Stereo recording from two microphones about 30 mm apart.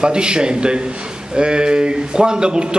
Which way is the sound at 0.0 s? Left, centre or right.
Right.